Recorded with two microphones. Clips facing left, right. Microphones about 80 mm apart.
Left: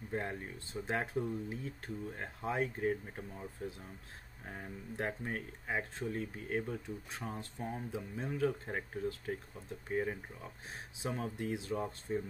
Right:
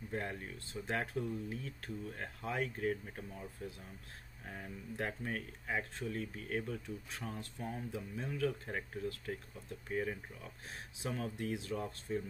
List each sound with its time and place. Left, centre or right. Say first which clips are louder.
0.1 s speech: left 2 dB; left